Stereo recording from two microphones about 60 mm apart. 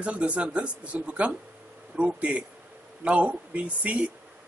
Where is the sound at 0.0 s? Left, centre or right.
Right.